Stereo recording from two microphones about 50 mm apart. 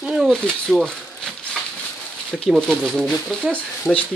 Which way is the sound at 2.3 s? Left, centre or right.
Centre.